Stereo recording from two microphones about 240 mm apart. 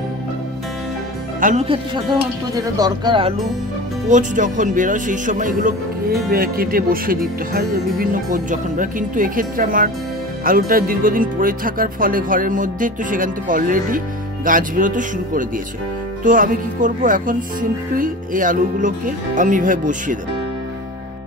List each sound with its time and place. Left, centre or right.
1.4 s speech: right
2.5 s speech: centre
4.1 s speech: right